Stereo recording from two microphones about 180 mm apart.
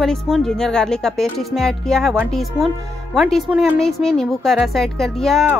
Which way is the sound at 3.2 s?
Centre (ahead or behind).